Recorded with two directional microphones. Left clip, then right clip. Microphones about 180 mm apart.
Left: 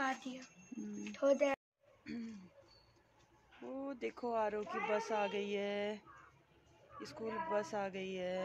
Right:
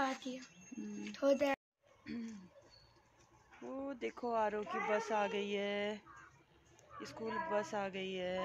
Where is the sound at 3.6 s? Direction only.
Centre (ahead or behind).